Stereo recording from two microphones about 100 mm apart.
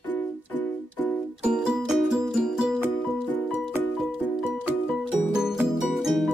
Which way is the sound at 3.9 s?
Centre (ahead or behind).